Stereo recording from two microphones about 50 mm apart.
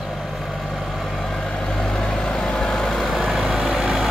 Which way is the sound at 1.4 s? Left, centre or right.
Centre.